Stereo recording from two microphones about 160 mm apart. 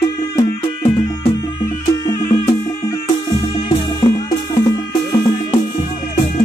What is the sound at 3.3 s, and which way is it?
Music, 35° left (ahead or behind).